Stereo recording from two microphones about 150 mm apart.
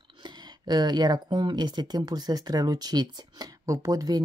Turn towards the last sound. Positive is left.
turn(degrees=-25)  # may be behind; listen again after turning